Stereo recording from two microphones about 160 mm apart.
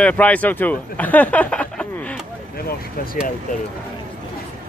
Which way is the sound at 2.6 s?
65° left (ahead or behind).